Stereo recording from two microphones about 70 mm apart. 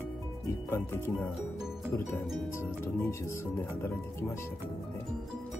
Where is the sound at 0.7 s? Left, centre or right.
Left.